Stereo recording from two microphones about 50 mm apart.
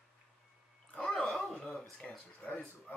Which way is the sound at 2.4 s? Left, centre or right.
Left.